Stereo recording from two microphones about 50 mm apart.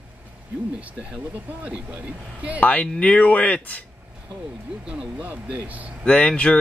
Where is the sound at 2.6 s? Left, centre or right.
Left.